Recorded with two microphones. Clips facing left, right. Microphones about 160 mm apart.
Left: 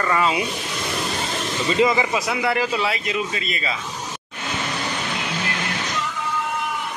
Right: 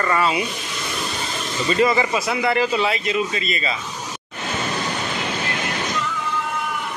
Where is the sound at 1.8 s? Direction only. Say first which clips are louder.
Even; 15° left (ahead or behind).